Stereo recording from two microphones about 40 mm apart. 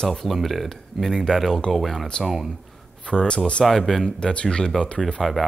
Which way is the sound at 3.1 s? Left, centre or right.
Left.